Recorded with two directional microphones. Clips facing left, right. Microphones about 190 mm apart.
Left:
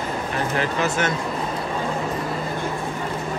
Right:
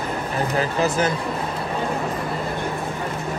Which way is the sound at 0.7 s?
35° right (ahead or behind).